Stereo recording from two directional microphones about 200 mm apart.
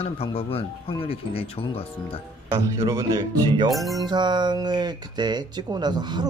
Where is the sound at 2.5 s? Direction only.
15° right (ahead or behind).